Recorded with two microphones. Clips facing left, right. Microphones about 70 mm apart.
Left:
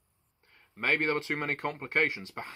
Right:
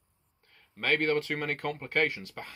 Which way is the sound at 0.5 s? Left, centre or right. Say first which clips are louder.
Right 1 dB; centre.